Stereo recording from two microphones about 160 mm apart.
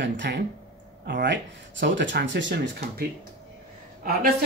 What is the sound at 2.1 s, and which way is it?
Speech, 90° right.